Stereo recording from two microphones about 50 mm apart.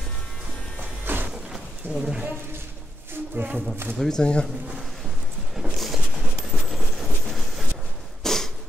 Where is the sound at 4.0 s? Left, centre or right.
Centre.